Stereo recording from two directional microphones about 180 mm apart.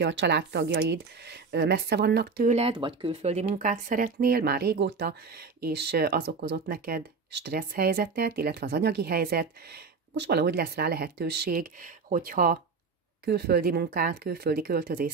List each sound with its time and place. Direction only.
0.0 s speech: 85° right; by 2.4 s 65° right (ahead or behind)
2.4 s speech: 35° right (ahead or behind); by 9.5 s 60° right (ahead or behind)
10.1 s speech: 70° right (ahead or behind)